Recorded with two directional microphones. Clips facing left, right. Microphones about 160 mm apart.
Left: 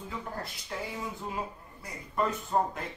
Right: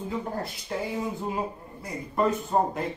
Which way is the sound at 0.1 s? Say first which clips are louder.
Right 6 dB; 30° right (ahead or behind).